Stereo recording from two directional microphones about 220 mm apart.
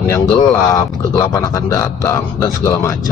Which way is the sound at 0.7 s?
15° left (ahead or behind).